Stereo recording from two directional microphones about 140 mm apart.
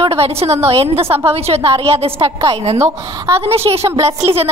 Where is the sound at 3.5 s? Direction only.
45° right (ahead or behind).